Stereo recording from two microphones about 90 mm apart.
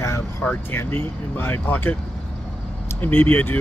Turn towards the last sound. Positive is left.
turn(degrees=25)  # may be behind; listen again after turning